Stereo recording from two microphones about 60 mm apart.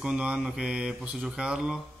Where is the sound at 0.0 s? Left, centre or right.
Centre.